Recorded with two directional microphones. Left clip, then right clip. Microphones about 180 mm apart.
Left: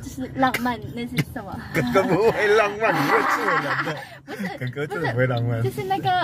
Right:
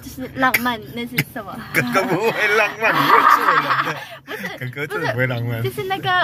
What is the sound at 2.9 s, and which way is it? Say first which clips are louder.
A woman's voice: right 7 dB; 10° right (ahead or behind).